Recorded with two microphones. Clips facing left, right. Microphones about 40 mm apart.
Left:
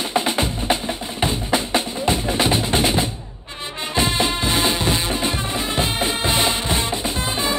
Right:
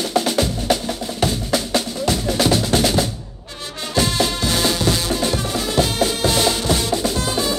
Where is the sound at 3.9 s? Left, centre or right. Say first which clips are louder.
Right 1 dB; left.